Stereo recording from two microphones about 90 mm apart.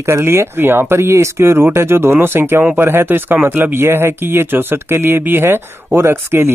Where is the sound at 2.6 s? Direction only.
15° right (ahead or behind).